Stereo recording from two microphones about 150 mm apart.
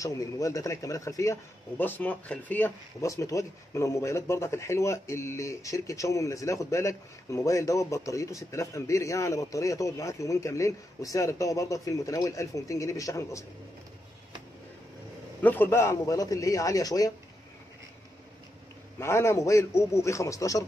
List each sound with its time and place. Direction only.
0.0 s a man's voice: 20° left (ahead or behind)
15.4 s a man's voice: 15° left (ahead or behind)
18.9 s a man's voice: 15° left (ahead or behind)